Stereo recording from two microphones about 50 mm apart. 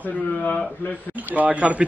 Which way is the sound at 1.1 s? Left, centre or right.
Right.